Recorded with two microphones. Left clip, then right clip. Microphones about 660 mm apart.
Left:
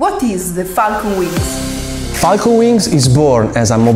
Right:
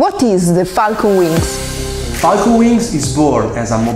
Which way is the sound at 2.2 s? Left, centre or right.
Left.